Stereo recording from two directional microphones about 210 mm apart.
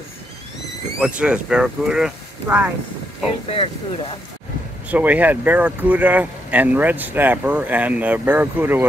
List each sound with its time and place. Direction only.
0.9 s speech: 5° right (ahead or behind)
3.5 s speech: 25° left (ahead or behind)
4.8 s speech: 5° right (ahead or behind)